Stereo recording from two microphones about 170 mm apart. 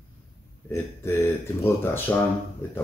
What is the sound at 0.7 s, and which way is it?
Speech, 15° left (ahead or behind).